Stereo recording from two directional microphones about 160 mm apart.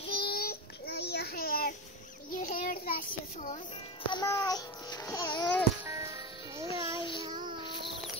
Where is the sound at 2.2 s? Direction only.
55° left (ahead or behind).